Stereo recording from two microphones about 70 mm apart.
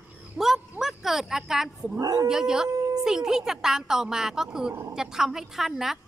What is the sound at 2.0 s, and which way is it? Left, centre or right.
Speech, right.